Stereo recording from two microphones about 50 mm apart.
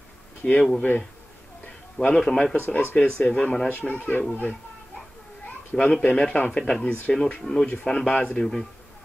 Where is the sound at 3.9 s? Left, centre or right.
Left.